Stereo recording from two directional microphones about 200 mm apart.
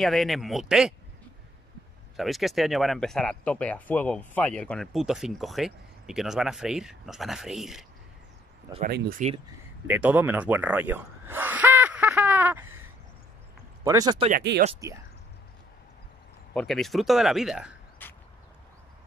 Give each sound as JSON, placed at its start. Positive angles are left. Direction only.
{"t": 0.0, "sound": "speech", "side_deg": 0}
{"t": 2.1, "sound": "speech", "side_deg": 0}
{"t": 8.8, "sound": "speech", "side_deg": -50}
{"t": 9.8, "sound": "a sound", "side_deg": -10}
{"t": 13.8, "sound": "speech", "side_deg": -20}
{"t": 14.5, "sound": "speech", "side_deg": -60}
{"t": 16.5, "sound": "speech", "side_deg": 0}
{"t": 18.0, "sound": "a sound", "side_deg": 10}